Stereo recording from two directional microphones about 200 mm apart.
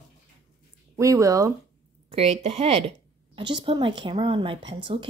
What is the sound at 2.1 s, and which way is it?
A woman's voice, 30° right (ahead or behind).